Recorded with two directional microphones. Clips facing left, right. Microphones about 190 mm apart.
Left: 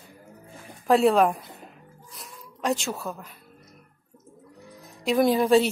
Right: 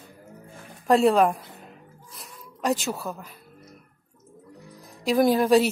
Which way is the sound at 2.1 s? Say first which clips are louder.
Even; centre (ahead or behind).